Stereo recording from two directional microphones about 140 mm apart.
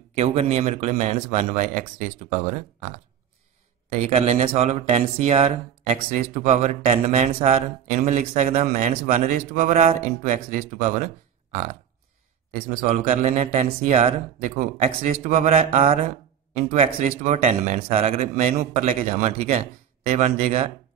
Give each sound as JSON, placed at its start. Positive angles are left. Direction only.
{"t": 0.1, "sound": "speech", "side_deg": -45}
{"t": 3.9, "sound": "speech", "side_deg": -50}
{"t": 12.5, "sound": "speech", "side_deg": -50}